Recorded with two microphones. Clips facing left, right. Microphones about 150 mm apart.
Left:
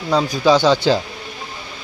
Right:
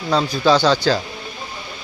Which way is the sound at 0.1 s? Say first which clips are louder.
Left 1 dB; 15° left (ahead or behind).